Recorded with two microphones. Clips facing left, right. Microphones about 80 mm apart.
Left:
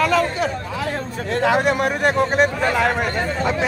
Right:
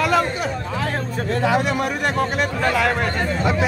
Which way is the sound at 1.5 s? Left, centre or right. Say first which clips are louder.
Left 2 dB; left.